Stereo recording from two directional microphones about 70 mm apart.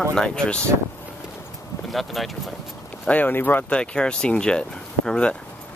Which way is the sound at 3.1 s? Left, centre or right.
Left.